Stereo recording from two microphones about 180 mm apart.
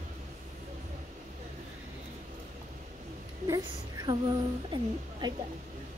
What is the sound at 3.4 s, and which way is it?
A woman's voice, 20° right (ahead or behind).